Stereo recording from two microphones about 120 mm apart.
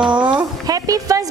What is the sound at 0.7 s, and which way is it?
Music, 30° right (ahead or behind).